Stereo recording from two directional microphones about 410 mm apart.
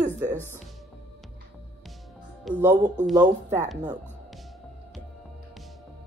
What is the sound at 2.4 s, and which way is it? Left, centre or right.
Speech, centre.